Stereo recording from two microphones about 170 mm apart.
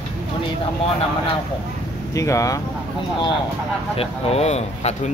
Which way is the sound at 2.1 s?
20° left (ahead or behind).